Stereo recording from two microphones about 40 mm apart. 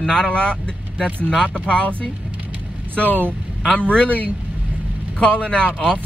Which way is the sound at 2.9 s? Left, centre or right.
Left.